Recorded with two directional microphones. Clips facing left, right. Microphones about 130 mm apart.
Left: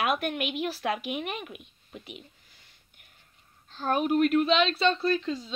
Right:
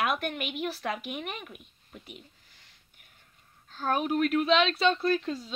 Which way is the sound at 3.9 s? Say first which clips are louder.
Left 3 dB; 5° left (ahead or behind).